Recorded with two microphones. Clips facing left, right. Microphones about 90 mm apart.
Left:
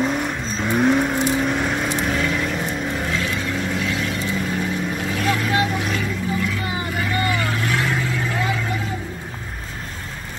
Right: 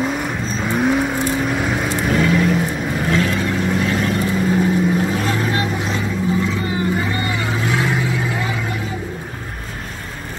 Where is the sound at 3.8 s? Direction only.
45° right (ahead or behind).